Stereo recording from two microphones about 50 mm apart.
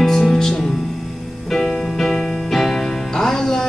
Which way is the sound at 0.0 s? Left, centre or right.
Centre.